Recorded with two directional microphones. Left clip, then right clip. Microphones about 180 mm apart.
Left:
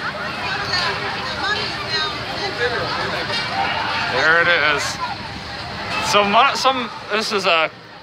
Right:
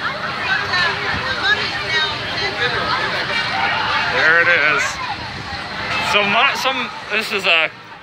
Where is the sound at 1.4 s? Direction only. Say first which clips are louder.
Right 4 dB; 55° left (ahead or behind).